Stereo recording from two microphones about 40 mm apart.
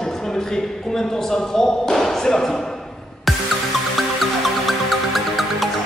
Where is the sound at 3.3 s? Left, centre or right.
Centre.